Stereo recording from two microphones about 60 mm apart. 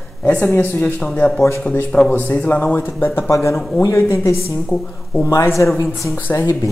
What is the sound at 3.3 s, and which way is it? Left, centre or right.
Speech, left.